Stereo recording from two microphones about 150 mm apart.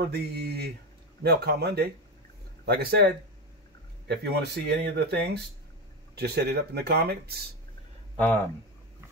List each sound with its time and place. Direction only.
0.0 s speech: 90° right